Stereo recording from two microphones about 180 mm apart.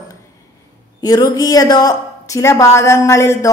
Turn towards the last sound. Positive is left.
turn(degrees=15)  # may be behind; listen again after turning